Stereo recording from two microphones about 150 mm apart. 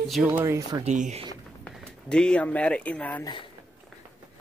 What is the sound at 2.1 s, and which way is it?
Speech, 5° left (ahead or behind).